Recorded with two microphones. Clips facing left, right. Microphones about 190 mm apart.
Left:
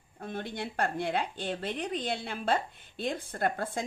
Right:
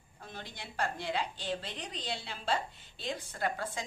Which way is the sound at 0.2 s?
55° left (ahead or behind).